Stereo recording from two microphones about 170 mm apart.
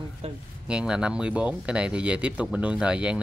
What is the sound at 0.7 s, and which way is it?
Speech, 5° right (ahead or behind).